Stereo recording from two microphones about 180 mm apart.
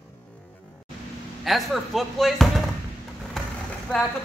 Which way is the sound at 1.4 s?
Centre (ahead or behind).